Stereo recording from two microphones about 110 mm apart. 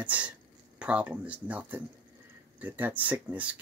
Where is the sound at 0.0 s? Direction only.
15° right (ahead or behind).